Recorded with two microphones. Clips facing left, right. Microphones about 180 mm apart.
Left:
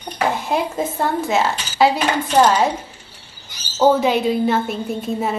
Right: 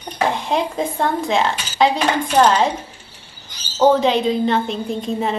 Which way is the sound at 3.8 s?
10° left (ahead or behind).